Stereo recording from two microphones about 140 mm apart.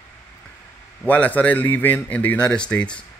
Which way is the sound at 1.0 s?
10° left (ahead or behind).